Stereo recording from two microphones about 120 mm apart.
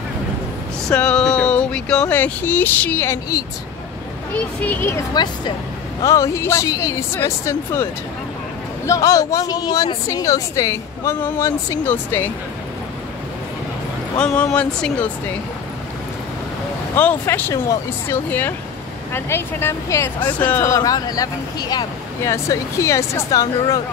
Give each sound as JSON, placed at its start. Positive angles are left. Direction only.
{"t": 0.8, "sound": "speech", "side_deg": 5}
{"t": 4.6, "sound": "speech", "side_deg": 20}
{"t": 5.1, "sound": "speech", "side_deg": 40}
{"t": 6.0, "sound": "speech", "side_deg": 25}
{"t": 14.1, "sound": "speech", "side_deg": 10}
{"t": 16.9, "sound": "speech", "side_deg": 15}